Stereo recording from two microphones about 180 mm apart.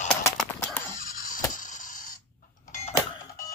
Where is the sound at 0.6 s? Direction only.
15° left (ahead or behind).